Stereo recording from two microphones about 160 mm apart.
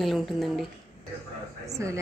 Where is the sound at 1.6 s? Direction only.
20° right (ahead or behind).